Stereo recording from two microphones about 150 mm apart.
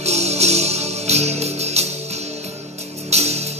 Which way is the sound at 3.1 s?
45° right (ahead or behind).